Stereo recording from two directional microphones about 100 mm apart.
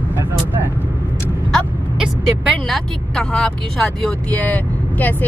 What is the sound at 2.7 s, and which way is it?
Speech, 10° left (ahead or behind).